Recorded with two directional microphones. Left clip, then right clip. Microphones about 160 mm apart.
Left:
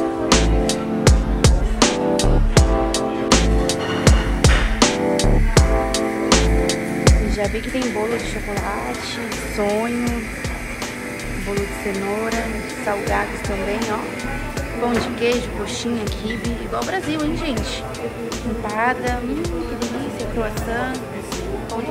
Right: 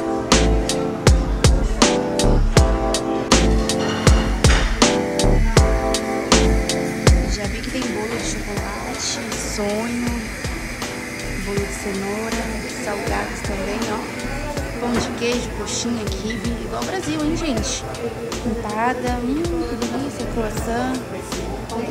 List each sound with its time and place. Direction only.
0.3 s music: centre (ahead or behind)
11.5 s music: centre (ahead or behind)
16.7 s speech: 15° right (ahead or behind)
18.8 s speech: 20° right (ahead or behind)